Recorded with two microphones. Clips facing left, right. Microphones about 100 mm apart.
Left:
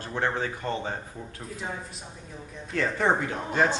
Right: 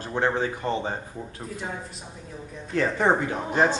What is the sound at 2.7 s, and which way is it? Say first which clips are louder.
Speech: right 3 dB; 15° right (ahead or behind).